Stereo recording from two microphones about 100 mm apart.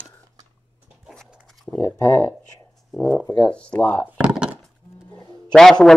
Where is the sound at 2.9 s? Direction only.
10° left (ahead or behind).